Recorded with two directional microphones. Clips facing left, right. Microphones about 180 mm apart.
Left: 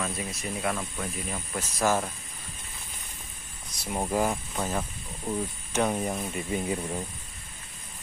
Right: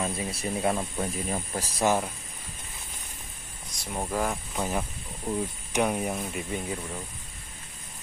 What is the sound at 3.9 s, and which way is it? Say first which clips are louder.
Speech: left 2 dB; 15° left (ahead or behind).